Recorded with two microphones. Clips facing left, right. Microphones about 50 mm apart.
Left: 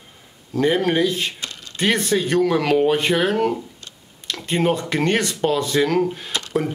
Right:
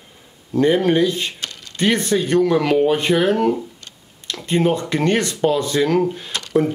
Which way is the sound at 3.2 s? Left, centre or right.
Centre.